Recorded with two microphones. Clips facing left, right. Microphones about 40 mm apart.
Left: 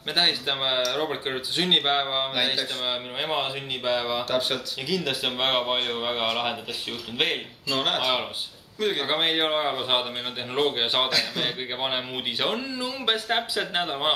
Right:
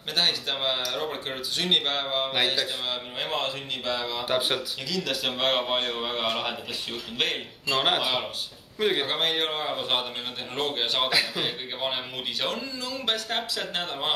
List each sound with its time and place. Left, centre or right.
0.1 s a man's voice: centre
4.3 s speech: centre
4.8 s a man's voice: centre
7.7 s a man's voice: centre
9.0 s a man's voice: centre